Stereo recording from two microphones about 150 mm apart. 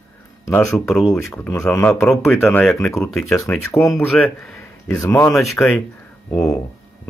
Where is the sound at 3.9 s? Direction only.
Centre (ahead or behind).